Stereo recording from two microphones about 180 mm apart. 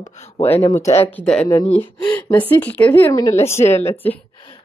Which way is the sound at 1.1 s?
5° left (ahead or behind).